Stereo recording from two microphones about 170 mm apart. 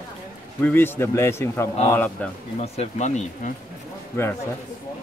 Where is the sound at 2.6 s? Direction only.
40° left (ahead or behind).